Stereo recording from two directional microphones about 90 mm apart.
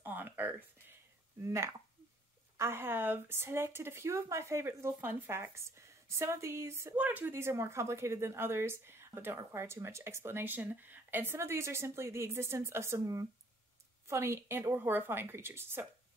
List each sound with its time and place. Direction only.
0.0 s a sound: 20° right (ahead or behind)
1.4 s speech: 30° right (ahead or behind)
7.0 s speech: 20° right (ahead or behind)